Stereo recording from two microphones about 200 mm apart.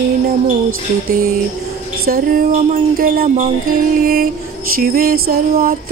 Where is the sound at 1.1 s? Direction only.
50° right (ahead or behind).